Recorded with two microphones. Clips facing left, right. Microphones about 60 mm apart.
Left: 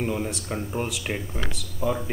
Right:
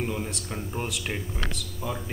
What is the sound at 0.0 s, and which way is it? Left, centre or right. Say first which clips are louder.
Speech: left 3 dB; centre.